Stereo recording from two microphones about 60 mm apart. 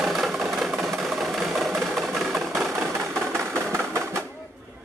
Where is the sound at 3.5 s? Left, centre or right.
Right.